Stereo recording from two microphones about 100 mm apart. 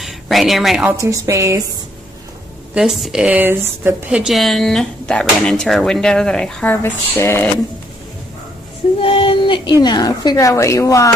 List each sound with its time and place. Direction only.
0.0 s speech: centre (ahead or behind)
1.0 s a woman's voice: 35° right (ahead or behind)
2.7 s speech: 5° right (ahead or behind)
3.3 s speech: 20° right (ahead or behind)
4.1 s speech: 5° right (ahead or behind)
6.7 s speech: 25° left (ahead or behind)
9.0 s a woman's voice: 65° left (ahead or behind); by 11.1 s 35° left (ahead or behind)